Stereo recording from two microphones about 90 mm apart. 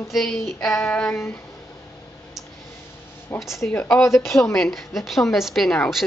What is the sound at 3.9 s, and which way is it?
A woman's voice, 5° left (ahead or behind).